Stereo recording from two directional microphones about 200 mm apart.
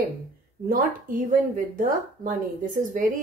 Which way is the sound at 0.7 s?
45° right (ahead or behind).